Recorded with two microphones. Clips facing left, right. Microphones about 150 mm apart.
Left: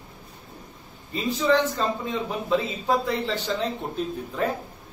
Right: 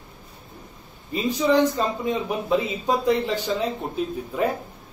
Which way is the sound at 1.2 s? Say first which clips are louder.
Right 2 dB; 15° right (ahead or behind).